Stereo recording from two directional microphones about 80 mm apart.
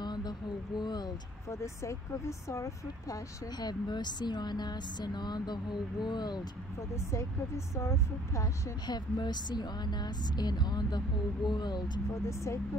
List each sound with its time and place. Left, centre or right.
0.0 s vehicle: left
1.5 s speech: left
3.5 s speech: left
7.1 s speech: left
8.8 s speech: left
12.3 s speech: left